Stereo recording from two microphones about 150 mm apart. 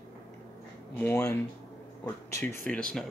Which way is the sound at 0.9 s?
15° left (ahead or behind).